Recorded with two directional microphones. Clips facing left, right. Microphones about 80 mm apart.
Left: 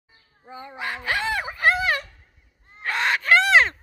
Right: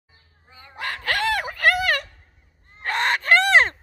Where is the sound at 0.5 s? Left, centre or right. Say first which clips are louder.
Left 10 dB; left.